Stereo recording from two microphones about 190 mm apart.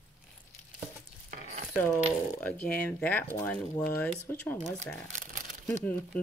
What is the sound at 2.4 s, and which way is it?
Speech, 10° left (ahead or behind).